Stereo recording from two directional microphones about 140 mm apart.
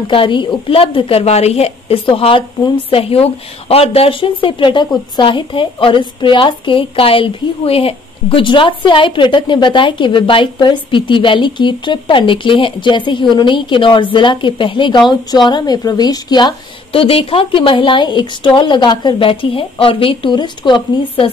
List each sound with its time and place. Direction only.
0.1 s a woman's voice: 35° left (ahead or behind)